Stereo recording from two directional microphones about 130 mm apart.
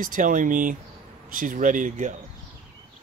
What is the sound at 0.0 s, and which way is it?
Speech, 90° right.